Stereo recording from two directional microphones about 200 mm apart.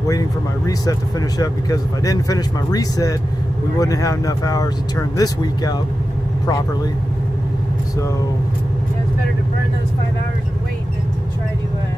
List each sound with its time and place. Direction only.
1.4 s speech: 15° left (ahead or behind)